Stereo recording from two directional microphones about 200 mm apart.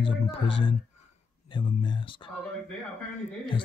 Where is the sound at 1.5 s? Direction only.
25° left (ahead or behind).